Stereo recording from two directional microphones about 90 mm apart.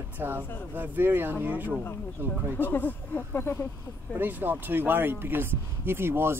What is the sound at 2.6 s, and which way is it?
Speech, 20° left (ahead or behind).